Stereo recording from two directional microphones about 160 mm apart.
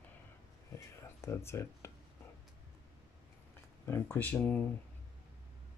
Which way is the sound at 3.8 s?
15° left (ahead or behind).